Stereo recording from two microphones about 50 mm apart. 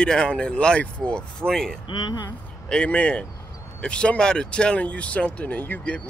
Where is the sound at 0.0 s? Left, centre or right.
Centre.